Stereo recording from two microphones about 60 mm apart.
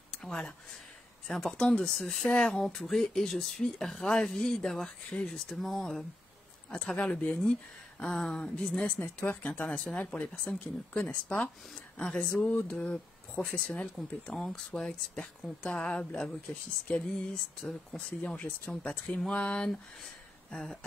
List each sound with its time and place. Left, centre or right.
0.2 s speech: centre
9.0 s speech: left
9.4 s speech: centre
11.7 s speech: centre
14.2 s speech: centre
20.4 s a sound: centre